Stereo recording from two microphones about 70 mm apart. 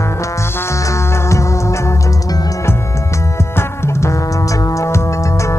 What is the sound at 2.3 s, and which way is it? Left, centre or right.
Music, left.